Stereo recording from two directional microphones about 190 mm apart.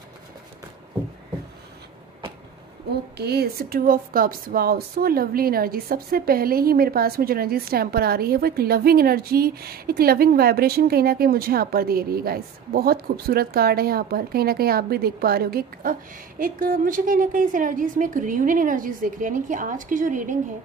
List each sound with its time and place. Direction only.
3.2 s speech: 55° right (ahead or behind)